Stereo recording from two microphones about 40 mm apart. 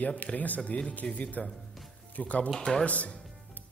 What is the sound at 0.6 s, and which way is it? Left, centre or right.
Speech, left.